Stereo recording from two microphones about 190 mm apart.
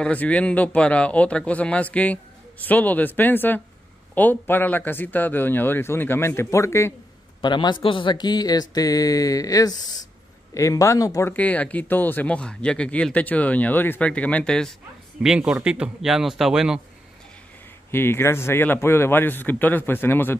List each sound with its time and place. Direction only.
0.0 s speech: 5° left (ahead or behind)
7.4 s a sound: 25° left (ahead or behind)
10.5 s a man's voice: 15° left (ahead or behind); by 16.8 s centre (ahead or behind)
17.9 s speech: 10° left (ahead or behind)